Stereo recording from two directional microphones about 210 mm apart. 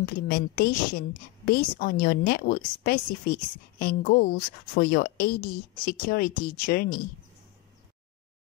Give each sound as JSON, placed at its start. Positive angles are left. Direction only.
{"t": 0.0, "sound": "a woman's voice", "side_deg": 50}